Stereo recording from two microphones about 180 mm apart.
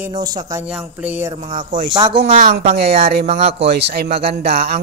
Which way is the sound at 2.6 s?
45° right (ahead or behind).